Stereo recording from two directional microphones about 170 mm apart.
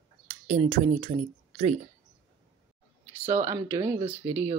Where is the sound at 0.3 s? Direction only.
40° right (ahead or behind).